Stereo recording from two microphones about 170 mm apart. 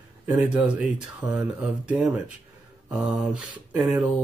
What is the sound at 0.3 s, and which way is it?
Speech, 10° right (ahead or behind).